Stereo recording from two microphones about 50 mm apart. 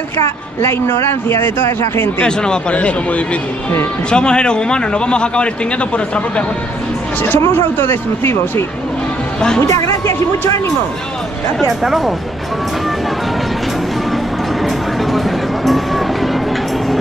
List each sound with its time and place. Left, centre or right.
0.6 s a man's voice: left
2.2 s speech: centre
7.2 s speech: left
9.7 s music: left
11.6 s speech: centre
14.1 s music: centre